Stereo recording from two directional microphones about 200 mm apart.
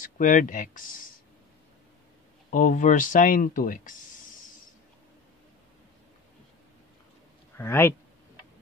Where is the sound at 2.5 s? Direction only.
40° left (ahead or behind).